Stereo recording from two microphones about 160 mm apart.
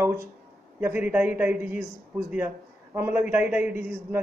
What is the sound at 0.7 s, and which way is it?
A woman's voice, 10° right (ahead or behind).